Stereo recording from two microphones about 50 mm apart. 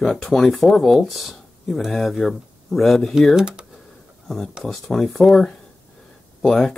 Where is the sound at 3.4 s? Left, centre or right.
Centre.